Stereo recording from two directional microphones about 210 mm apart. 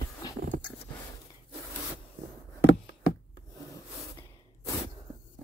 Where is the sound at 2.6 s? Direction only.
65° left (ahead or behind).